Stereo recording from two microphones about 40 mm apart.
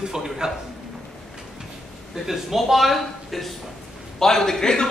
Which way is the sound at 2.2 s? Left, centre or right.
Centre.